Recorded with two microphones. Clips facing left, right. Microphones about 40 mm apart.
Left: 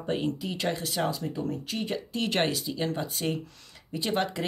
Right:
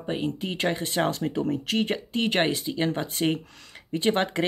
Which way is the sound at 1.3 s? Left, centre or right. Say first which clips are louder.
Right 6 dB; right.